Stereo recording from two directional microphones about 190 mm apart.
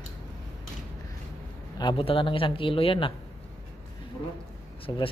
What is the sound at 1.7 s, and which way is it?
Speech, 25° left (ahead or behind).